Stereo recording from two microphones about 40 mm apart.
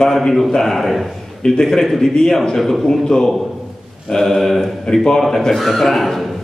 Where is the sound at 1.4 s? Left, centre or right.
Centre.